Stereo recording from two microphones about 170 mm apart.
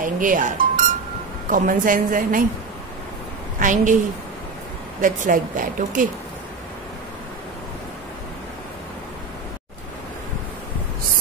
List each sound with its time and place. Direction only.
0.0 s speech: 50° right (ahead or behind)
3.5 s speech: 50° right (ahead or behind)
5.0 s speech: 50° right (ahead or behind)